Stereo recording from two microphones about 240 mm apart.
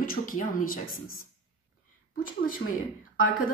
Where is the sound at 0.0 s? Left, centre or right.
Left.